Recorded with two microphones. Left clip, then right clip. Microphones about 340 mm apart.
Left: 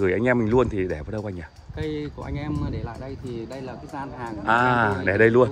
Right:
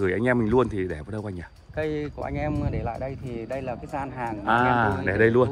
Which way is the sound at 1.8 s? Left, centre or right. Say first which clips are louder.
Right 2 dB; right.